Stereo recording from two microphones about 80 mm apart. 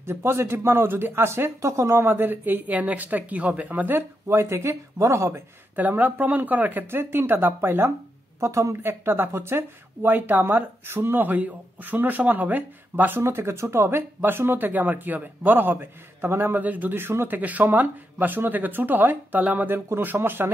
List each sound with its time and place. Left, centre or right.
0.0 s speech: right
5.8 s speech: right